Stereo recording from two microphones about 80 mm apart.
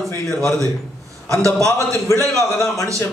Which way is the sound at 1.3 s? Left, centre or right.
Right.